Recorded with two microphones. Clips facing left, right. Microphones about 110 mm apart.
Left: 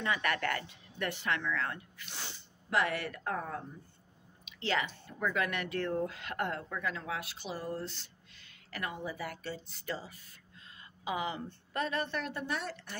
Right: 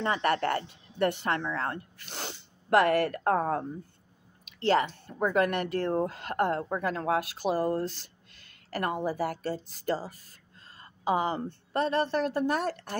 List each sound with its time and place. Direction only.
0.0 s a woman's voice: 35° right (ahead or behind)
0.7 s speech: 45° right (ahead or behind)
2.1 s a woman's voice: 60° right (ahead or behind)